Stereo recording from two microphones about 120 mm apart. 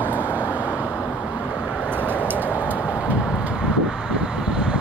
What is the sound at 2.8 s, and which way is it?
Vehicle, 10° right (ahead or behind).